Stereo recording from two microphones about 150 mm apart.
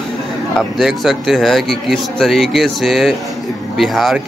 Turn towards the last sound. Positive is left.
turn(degrees=0)  # may be behind; listen again after turning